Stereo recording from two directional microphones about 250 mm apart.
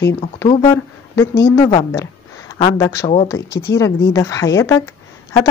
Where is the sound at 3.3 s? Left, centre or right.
Centre.